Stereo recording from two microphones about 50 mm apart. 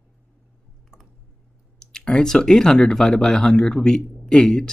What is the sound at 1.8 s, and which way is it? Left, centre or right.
Speech, centre.